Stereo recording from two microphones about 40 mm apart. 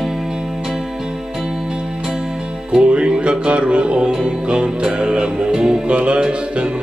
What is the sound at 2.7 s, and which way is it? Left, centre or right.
Music, right.